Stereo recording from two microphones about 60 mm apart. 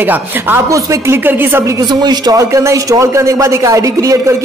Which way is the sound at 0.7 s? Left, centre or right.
Right.